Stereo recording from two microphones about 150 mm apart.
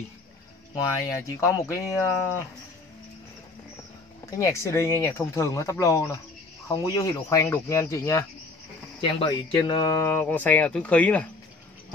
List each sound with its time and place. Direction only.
1.0 s speech: 20° left (ahead or behind)
4.3 s speech: 20° left (ahead or behind)
9.3 s speech: 30° left (ahead or behind)
10.0 s speech: 10° left (ahead or behind)